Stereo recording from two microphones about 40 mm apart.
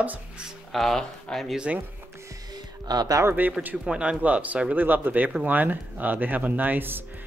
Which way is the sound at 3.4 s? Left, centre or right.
Right.